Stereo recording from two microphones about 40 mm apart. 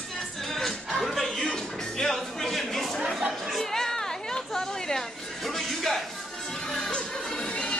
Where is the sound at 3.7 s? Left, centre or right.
Centre.